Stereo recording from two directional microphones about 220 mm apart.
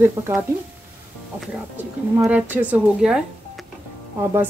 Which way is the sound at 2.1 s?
5° right (ahead or behind).